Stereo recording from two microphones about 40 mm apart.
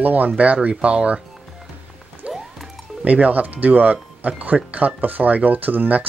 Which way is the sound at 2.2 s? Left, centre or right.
Right.